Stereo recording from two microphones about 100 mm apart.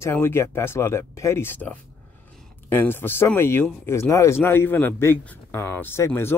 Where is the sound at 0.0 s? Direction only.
25° left (ahead or behind).